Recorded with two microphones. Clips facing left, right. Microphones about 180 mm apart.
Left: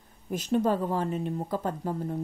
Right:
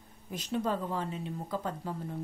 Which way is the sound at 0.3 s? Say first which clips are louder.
Left 7 dB; 45° left (ahead or behind).